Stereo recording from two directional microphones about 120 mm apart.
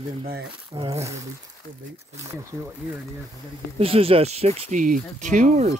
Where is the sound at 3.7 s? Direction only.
50° right (ahead or behind).